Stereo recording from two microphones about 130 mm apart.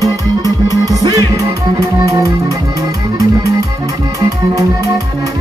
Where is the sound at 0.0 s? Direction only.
30° right (ahead or behind).